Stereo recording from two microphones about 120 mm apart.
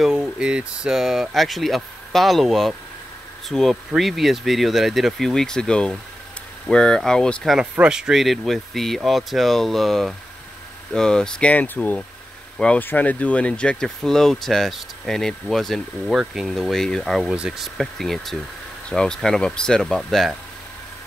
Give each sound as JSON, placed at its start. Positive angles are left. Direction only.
{"t": 0.0, "sound": "speech", "side_deg": -5}
{"t": 7.7, "sound": "speech", "side_deg": -10}